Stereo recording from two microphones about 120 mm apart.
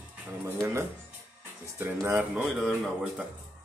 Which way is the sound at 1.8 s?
20° right (ahead or behind).